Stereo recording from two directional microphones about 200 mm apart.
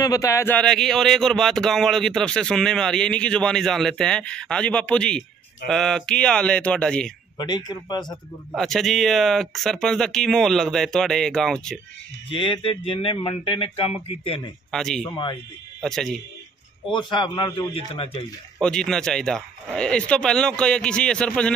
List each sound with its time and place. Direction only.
0.0 s speech: 15° left (ahead or behind)
7.3 s speech: 20° left (ahead or behind)
8.5 s speech: centre (ahead or behind)
12.3 s speech: 25° left (ahead or behind)
14.7 s speech: centre (ahead or behind)
15.0 s speech: 20° left (ahead or behind)
15.8 s speech: centre (ahead or behind)
16.9 s speech: 25° left (ahead or behind)
18.6 s speech: 5° left (ahead or behind)